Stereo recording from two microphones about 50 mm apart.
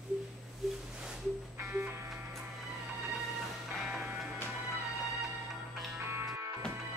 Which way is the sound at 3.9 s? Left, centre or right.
Right.